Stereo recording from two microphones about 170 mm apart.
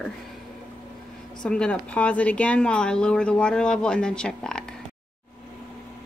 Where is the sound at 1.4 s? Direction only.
5° left (ahead or behind).